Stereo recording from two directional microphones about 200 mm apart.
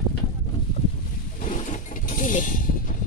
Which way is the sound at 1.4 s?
40° left (ahead or behind).